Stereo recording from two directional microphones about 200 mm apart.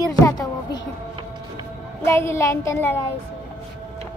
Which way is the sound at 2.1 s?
15° left (ahead or behind).